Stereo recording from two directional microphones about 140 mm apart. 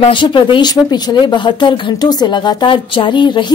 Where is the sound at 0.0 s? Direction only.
35° left (ahead or behind).